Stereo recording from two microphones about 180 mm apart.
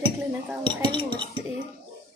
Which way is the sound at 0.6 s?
25° right (ahead or behind).